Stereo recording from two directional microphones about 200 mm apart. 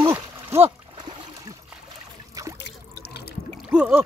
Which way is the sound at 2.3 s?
15° right (ahead or behind).